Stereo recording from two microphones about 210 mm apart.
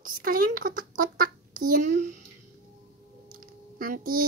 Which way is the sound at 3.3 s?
45° right (ahead or behind).